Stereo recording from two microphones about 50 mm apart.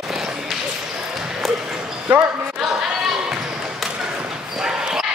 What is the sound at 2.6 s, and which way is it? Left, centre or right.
Chatter, centre.